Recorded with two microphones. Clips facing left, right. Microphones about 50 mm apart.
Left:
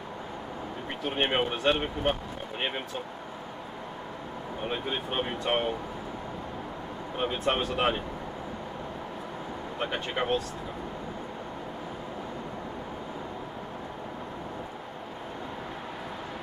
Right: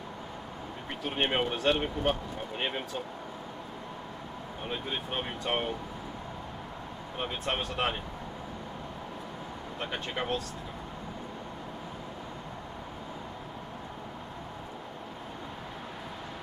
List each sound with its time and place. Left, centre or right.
1.0 s speech: centre
4.6 s speech: centre
7.2 s speech: centre
9.8 s speech: centre